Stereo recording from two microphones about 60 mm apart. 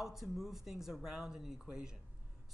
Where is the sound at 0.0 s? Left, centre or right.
Centre.